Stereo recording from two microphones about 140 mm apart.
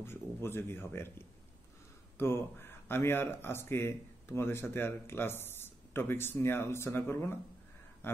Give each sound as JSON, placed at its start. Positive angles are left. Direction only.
{"t": 0.0, "sound": "speech", "side_deg": 15}